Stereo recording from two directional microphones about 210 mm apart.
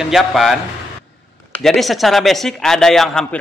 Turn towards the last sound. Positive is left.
turn(degrees=0)  # may be behind; listen again after turning